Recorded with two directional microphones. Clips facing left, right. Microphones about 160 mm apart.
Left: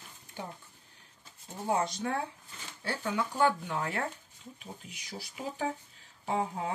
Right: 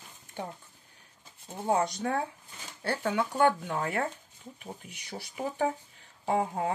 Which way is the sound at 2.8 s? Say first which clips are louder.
Right 4 dB; 60° right (ahead or behind).